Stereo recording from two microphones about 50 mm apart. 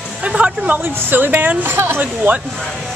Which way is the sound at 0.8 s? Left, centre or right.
Right.